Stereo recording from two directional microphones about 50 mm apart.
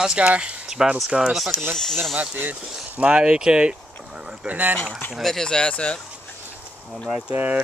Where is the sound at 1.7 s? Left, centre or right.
Centre.